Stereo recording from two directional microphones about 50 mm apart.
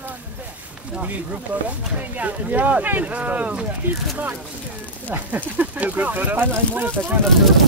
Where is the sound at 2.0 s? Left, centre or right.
Right.